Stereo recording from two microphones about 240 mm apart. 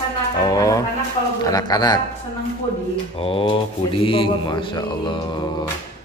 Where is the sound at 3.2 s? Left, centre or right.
Left.